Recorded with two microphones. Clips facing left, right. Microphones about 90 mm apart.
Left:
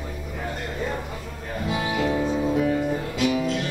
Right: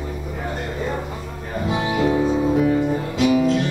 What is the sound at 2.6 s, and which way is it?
Music, 10° right (ahead or behind).